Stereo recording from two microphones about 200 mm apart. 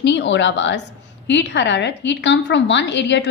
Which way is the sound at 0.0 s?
60° left (ahead or behind).